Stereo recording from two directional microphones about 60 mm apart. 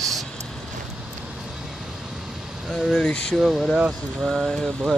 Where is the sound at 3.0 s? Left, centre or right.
Centre.